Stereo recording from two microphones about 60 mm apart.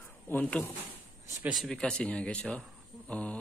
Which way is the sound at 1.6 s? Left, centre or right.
Centre.